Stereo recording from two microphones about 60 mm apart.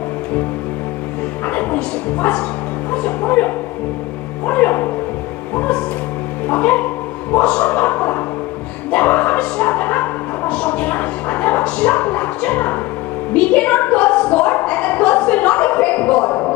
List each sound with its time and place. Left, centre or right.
1.5 s speech: left
6.5 s speech: left
7.3 s speech: centre
8.9 s bow-wow: left
10.5 s a sound: centre